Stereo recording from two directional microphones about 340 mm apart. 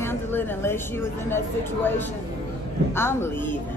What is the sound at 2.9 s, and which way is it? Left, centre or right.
Speech, centre.